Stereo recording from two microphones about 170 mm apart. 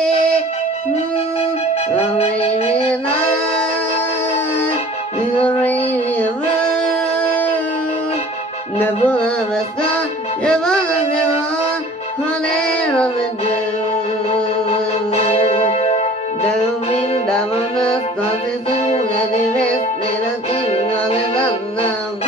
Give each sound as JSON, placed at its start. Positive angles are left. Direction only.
{"t": 5.4, "sound": "child singing", "side_deg": 10}
{"t": 8.7, "sound": "music", "side_deg": 10}
{"t": 14.7, "sound": "music", "side_deg": 35}
{"t": 18.7, "sound": "music", "side_deg": 40}
{"t": 20.6, "sound": "music", "side_deg": 35}